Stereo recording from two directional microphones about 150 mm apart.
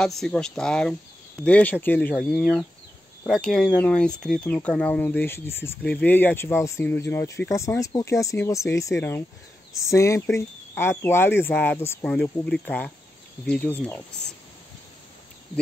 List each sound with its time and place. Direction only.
0.0 s speech: 5° left (ahead or behind)
2.1 s speech: centre (ahead or behind)